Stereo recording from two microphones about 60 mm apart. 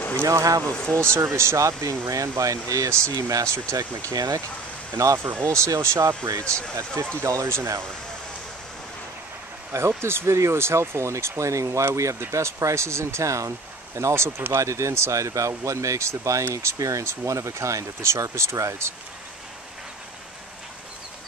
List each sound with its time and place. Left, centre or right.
0.2 s speech: right
0.7 s speech: centre
1.1 s speech: right
1.6 s speech: right
3.7 s speech: right
4.9 s speech: right
5.4 s speech: right
7.4 s speech: right
9.7 s speech: right
16.7 s speech: right
17.0 s speech: right